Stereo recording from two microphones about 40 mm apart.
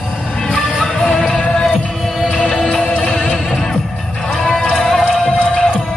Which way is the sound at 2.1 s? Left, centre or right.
Centre.